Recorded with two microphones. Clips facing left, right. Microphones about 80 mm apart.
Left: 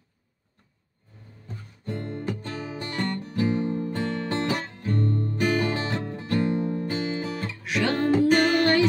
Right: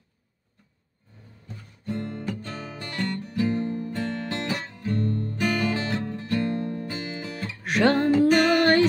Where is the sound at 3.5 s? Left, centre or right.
Centre.